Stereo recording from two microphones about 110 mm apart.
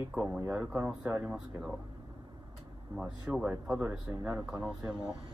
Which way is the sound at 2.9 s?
10° right (ahead or behind).